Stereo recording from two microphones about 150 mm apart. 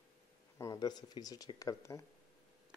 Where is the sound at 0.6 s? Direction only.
25° left (ahead or behind).